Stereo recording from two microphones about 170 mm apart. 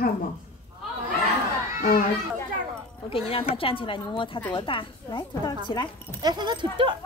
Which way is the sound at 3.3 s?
35° left (ahead or behind).